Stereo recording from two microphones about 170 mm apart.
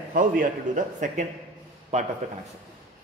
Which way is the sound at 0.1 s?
55° right (ahead or behind).